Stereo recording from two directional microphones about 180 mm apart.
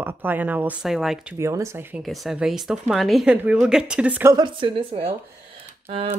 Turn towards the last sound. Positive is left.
turn(degrees=-30)  # may be behind; listen again after turning